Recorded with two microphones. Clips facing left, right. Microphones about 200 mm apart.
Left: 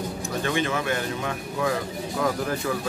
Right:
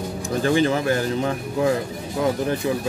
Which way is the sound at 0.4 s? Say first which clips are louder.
Right 7 dB; 35° right (ahead or behind).